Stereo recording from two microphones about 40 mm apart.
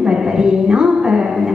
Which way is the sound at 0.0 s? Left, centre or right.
Right.